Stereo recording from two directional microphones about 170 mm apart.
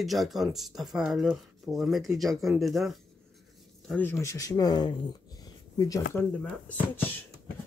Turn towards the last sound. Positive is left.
turn(degrees=10)  # may be behind; listen again after turning